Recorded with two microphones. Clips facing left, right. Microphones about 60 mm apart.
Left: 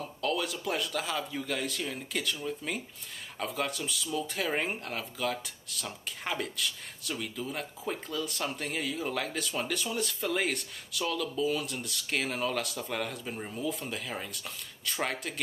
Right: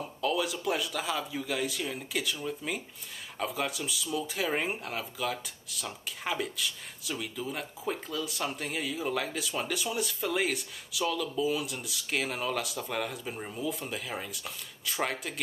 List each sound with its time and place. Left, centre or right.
0.0 s speech: centre